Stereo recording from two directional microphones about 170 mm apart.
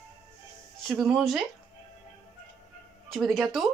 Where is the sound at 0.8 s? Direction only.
5° right (ahead or behind).